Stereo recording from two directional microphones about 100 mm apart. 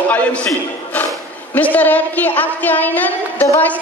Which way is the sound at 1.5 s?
15° left (ahead or behind).